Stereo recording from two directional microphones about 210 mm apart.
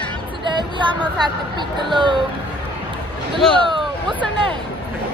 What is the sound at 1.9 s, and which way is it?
Speech, 20° right (ahead or behind).